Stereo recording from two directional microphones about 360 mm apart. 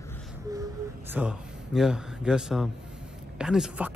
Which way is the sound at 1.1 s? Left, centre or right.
Centre.